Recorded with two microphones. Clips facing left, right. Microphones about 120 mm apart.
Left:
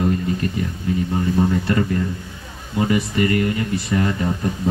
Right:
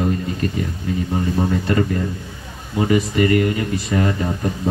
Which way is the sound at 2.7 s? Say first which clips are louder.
Right 2 dB; 25° right (ahead or behind).